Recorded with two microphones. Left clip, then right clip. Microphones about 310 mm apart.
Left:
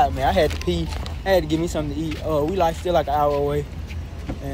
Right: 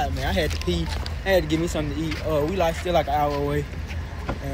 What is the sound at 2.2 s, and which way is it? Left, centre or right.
Speech, centre.